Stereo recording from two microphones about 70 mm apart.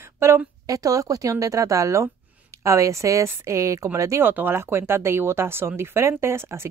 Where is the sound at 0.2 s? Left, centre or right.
Right.